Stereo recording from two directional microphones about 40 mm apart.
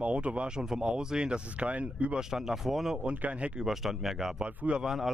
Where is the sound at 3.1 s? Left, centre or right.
Right.